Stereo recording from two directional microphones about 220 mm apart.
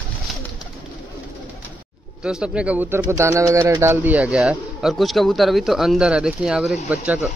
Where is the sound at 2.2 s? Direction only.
5° right (ahead or behind).